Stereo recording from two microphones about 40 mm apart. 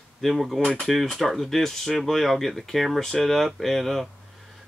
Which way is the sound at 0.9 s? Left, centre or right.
Centre.